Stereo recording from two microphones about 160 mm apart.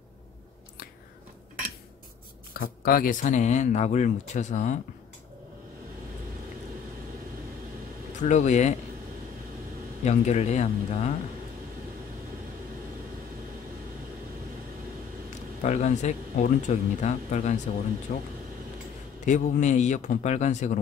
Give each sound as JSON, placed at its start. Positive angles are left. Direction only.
{"t": 2.6, "sound": "speech", "side_deg": 65}
{"t": 8.2, "sound": "speech", "side_deg": 50}
{"t": 10.0, "sound": "speech", "side_deg": 45}
{"t": 15.6, "sound": "speech", "side_deg": 45}